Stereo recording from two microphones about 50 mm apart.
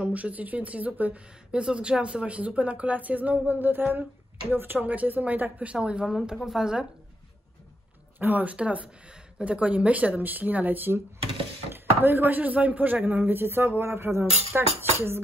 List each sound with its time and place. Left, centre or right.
0.0 s speech: right
1.5 s speech: centre; by 4.7 s right
4.7 s speech: right
6.3 s speech: centre
8.2 s speech: right
8.5 s speech: right